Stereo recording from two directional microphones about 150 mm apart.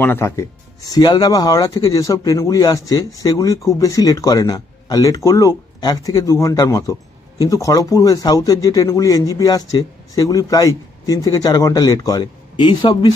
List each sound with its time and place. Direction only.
0.0 s speech: 15° left (ahead or behind)
0.9 s speech: 30° left (ahead or behind)